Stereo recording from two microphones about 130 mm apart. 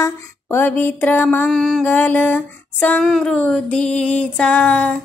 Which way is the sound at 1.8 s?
15° left (ahead or behind).